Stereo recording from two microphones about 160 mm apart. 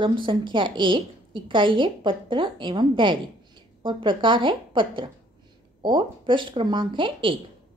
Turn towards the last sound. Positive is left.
turn(degrees=-30)  # may be behind; listen again after turning